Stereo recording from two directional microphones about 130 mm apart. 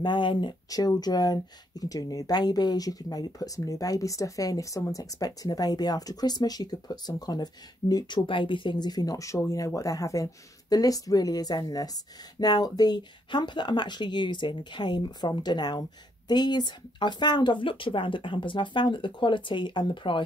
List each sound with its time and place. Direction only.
0.0 s speech: 35° left (ahead or behind)